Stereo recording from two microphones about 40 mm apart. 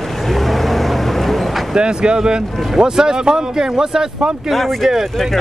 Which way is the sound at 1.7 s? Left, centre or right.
Right.